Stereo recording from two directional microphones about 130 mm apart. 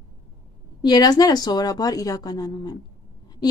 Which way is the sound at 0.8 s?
30° left (ahead or behind).